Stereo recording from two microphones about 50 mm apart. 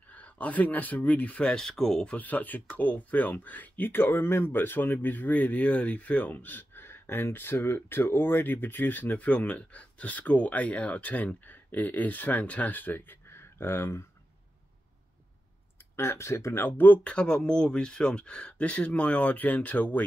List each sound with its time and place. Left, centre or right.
0.1 s speech: left
1.5 s speech: centre
2.0 s speech: left
16.0 s speech: left
16.6 s speech: left
17.0 s speech: left